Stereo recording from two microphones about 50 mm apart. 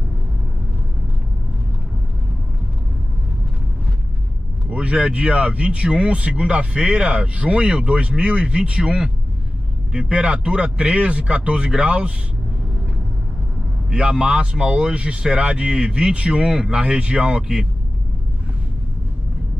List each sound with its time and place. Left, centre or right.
4.6 s speech: right
13.8 s speech: centre